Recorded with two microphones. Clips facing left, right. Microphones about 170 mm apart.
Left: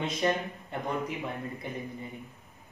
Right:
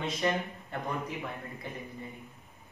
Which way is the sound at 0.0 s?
20° left (ahead or behind).